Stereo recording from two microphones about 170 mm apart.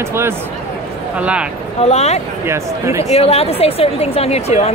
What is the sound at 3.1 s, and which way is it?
Speech, 35° left (ahead or behind).